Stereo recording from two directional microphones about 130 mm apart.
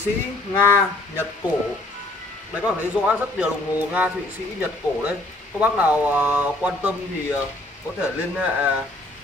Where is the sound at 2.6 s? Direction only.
10° right (ahead or behind).